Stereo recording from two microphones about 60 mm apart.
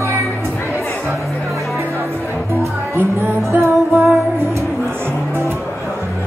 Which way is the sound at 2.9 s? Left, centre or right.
Right.